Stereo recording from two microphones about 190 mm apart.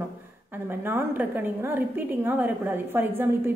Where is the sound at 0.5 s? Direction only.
10° right (ahead or behind).